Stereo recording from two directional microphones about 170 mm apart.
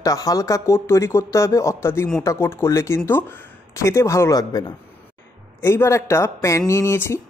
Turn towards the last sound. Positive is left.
turn(degrees=15)  # may be behind; listen again after turning